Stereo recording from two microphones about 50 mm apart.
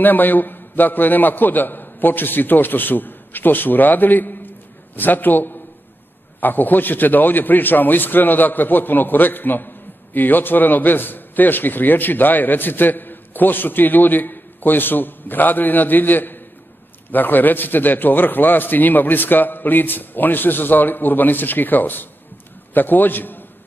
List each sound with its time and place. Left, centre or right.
0.0 s a man's voice: left